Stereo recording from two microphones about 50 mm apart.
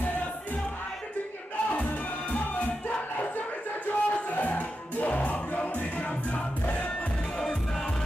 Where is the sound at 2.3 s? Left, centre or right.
Left.